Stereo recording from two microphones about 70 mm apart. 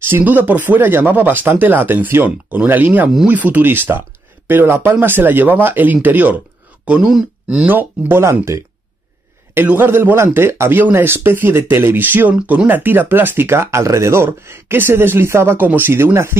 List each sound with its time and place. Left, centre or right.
0.1 s speech: right
6.9 s speech: centre
7.6 s speech: right
9.7 s speech: right
15.6 s speech: right
15.9 s speech: right